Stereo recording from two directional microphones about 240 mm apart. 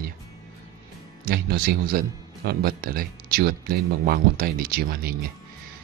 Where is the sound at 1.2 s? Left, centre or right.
Right.